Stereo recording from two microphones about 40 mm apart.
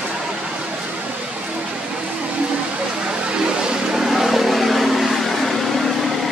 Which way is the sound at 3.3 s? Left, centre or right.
Right.